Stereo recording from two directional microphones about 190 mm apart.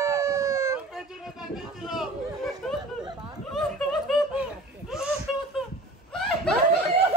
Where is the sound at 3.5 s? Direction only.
Centre (ahead or behind).